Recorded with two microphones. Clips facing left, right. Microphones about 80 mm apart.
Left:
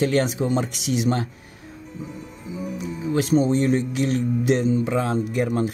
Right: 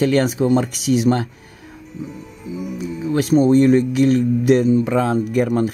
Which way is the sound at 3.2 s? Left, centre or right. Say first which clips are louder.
Right 6 dB; right.